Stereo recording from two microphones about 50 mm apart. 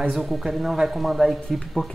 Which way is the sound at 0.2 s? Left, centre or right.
Centre.